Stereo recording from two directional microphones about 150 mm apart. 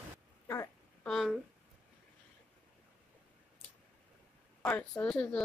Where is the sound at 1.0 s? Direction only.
Centre (ahead or behind).